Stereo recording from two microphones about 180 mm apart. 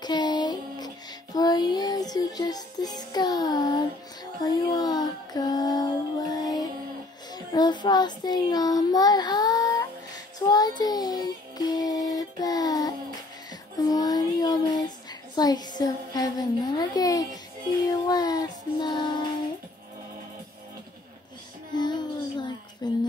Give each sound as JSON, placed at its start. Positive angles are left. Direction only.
{"t": 0.0, "sound": "music", "side_deg": 25}
{"t": 4.4, "sound": "a sound", "side_deg": 20}
{"t": 7.3, "sound": "child singing", "side_deg": 20}
{"t": 13.5, "sound": "music", "side_deg": 20}
{"t": 15.3, "sound": "a sound", "side_deg": 20}
{"t": 16.7, "sound": "speech", "side_deg": 20}
{"t": 18.0, "sound": "child singing", "side_deg": 20}
{"t": 21.7, "sound": "music", "side_deg": 25}
{"t": 22.8, "sound": "a sound", "side_deg": 25}